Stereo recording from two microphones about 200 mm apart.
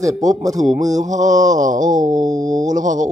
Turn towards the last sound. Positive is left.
turn(degrees=-40)  # may be behind; listen again after turning